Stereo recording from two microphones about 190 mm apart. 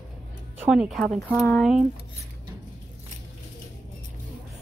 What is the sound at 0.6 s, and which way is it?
Speech, centre (ahead or behind).